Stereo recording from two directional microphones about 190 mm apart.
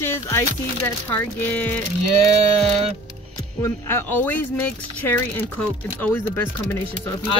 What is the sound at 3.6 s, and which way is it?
Speech, 10° left (ahead or behind).